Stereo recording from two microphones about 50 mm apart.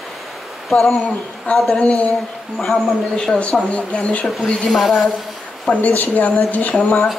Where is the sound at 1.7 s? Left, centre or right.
Left.